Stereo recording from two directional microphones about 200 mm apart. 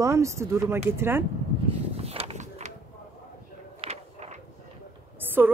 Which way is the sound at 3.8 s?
30° right (ahead or behind).